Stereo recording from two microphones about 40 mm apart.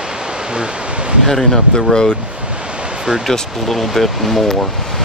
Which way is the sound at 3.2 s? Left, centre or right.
Centre.